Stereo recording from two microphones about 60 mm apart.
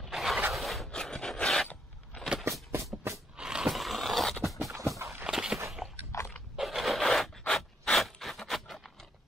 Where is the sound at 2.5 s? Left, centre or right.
Right.